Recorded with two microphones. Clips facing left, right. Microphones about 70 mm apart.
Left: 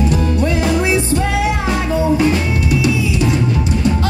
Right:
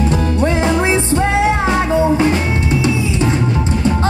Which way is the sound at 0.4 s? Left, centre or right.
Right.